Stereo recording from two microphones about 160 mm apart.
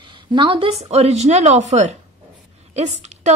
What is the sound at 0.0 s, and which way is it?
A woman's voice, 30° right (ahead or behind).